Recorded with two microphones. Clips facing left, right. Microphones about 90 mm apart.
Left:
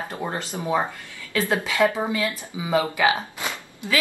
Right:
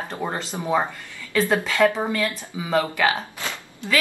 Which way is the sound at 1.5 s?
15° left (ahead or behind).